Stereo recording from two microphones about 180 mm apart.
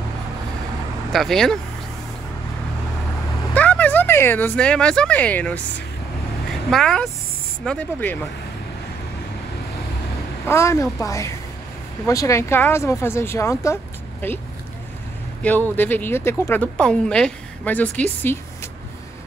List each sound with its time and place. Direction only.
1.1 s speech: centre (ahead or behind)
3.5 s speech: 10° left (ahead or behind)
6.7 s speech: 5° left (ahead or behind)
10.4 s speech: 15° left (ahead or behind)
15.7 s speech: 10° left (ahead or behind)